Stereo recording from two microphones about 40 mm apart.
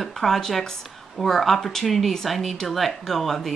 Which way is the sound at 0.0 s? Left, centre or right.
Centre.